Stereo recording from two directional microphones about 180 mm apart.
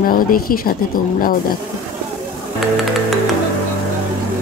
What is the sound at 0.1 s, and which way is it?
Speech, 50° left (ahead or behind).